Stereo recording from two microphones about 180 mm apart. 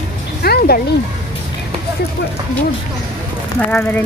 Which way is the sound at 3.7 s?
10° left (ahead or behind).